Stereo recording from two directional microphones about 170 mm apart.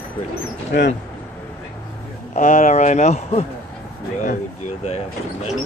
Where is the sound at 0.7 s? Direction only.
90° left.